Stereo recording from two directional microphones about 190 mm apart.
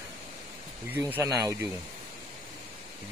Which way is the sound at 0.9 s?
10° right (ahead or behind).